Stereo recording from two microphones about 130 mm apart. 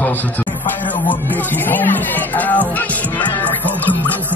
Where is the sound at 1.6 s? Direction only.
15° left (ahead or behind).